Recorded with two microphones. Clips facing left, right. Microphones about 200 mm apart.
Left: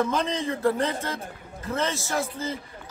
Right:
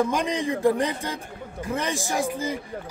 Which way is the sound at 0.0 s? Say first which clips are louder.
Right 2 dB; 15° right (ahead or behind).